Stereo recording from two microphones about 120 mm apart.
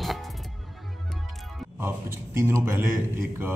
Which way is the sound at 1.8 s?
20° right (ahead or behind).